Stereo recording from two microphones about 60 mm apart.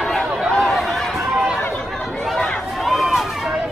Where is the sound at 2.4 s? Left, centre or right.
Centre.